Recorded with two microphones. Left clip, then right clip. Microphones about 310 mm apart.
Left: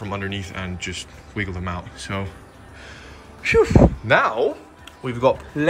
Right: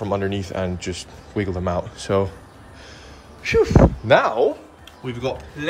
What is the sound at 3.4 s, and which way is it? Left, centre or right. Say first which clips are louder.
Speech: left 1 dB; centre.